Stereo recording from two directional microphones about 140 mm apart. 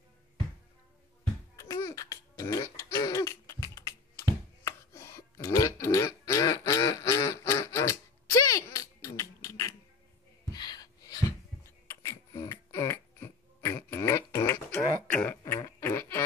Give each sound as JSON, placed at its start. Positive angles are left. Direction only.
{"t": 1.6, "sound": "throat clearing", "side_deg": 20}
{"t": 10.5, "sound": "a sound", "side_deg": 30}
{"t": 11.9, "sound": "music", "side_deg": 20}
{"t": 15.0, "sound": "throat clearing", "side_deg": 15}